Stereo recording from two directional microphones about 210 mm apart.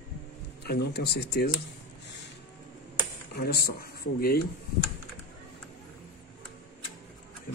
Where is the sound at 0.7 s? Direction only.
50° left (ahead or behind).